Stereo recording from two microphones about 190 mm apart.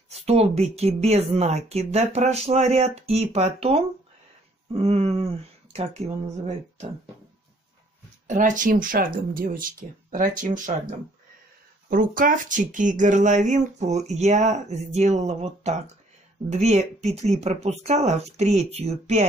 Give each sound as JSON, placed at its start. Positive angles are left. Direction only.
{"t": 0.1, "sound": "speech", "side_deg": -35}
{"t": 8.3, "sound": "speech", "side_deg": -45}
{"t": 11.9, "sound": "speech", "side_deg": -45}